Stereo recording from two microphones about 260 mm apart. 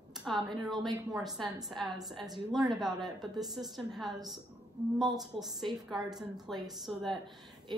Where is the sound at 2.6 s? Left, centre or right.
Centre.